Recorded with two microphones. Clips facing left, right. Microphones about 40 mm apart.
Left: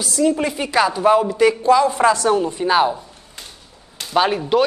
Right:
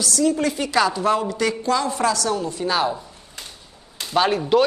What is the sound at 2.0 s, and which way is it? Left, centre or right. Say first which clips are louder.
Speech: left 6 dB; left.